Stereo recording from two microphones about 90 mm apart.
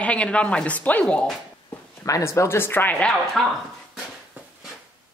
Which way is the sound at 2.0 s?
35° left (ahead or behind).